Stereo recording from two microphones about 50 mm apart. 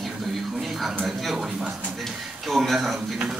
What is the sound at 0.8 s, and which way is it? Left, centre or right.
Speech, centre.